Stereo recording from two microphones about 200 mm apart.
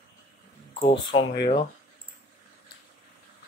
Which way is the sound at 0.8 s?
25° left (ahead or behind).